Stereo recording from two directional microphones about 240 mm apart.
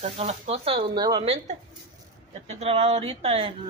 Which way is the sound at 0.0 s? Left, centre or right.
Right.